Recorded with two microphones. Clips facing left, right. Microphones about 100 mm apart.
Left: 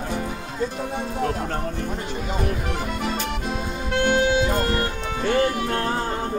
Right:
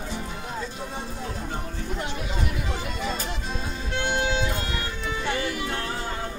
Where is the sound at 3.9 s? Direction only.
50° left (ahead or behind).